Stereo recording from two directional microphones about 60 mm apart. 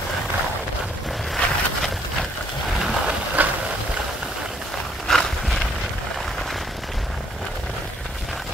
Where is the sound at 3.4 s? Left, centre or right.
Right.